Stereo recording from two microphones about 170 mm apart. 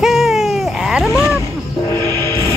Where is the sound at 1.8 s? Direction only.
15° left (ahead or behind).